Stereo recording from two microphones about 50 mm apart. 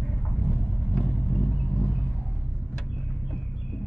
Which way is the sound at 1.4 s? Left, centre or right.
Left.